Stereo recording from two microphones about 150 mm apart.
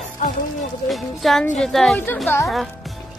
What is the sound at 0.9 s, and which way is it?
Speech, centre (ahead or behind).